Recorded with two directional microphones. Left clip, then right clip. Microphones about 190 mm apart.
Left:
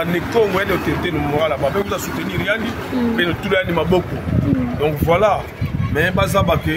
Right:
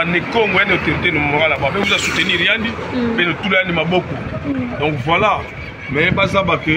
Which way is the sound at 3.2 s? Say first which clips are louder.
Right 3 dB; 20° left (ahead or behind).